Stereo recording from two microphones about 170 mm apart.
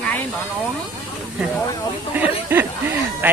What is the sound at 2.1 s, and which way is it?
Speech, 10° right (ahead or behind).